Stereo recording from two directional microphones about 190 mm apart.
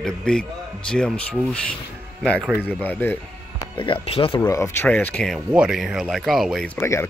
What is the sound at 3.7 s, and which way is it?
Speech, 25° left (ahead or behind).